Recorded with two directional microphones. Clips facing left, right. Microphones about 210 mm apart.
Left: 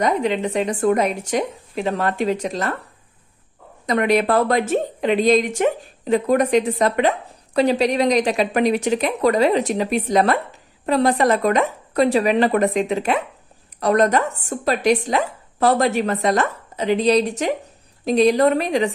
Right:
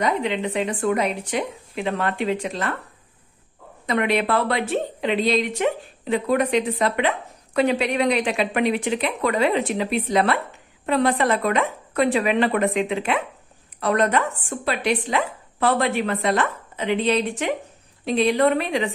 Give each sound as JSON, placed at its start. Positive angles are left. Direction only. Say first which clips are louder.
{"t": 0.0, "sound": "a woman's voice", "louder": "left 3 dB", "side_deg": 40}
{"t": 3.8, "sound": "a woman's voice", "louder": "left 4 dB", "side_deg": 40}